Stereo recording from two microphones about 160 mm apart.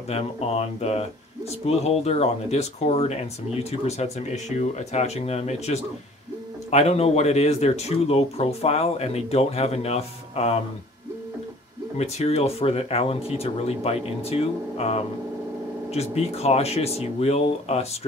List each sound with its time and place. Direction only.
0.1 s speech: 40° left (ahead or behind)
12.0 s speech: 40° left (ahead or behind)